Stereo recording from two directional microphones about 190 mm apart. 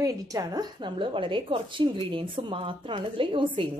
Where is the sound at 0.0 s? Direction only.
20° right (ahead or behind).